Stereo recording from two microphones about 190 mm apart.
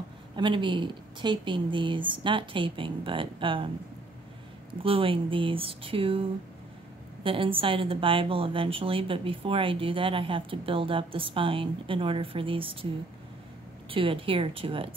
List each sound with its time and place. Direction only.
0.4 s a woman's voice: 25° right (ahead or behind)
4.8 s a woman's voice: 30° right (ahead or behind)
7.2 s a woman's voice: 30° right (ahead or behind)
13.8 s a woman's voice: 30° right (ahead or behind)